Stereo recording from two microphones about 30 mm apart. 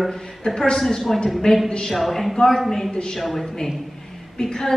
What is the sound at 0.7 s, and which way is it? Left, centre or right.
A woman's voice, centre.